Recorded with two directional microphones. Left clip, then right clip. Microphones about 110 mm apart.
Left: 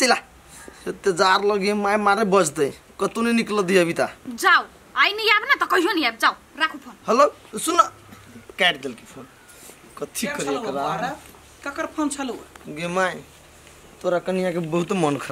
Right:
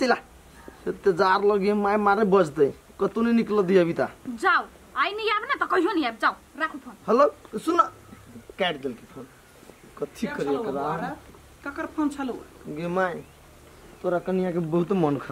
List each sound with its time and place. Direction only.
0.8 s speech: 5° left (ahead or behind)
9.9 s speech: 5° left (ahead or behind)